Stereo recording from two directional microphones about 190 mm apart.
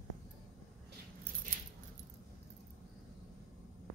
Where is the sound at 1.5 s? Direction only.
45° right (ahead or behind).